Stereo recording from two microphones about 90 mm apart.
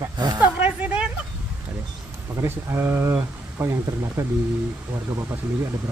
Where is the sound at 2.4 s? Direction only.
30° right (ahead or behind).